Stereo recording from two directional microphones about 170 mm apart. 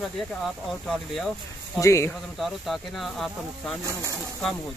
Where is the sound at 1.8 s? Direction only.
15° left (ahead or behind).